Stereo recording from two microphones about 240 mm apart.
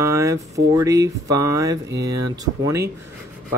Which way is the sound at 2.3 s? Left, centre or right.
Centre.